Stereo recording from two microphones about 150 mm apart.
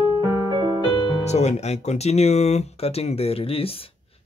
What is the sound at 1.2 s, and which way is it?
Speech, 50° left (ahead or behind).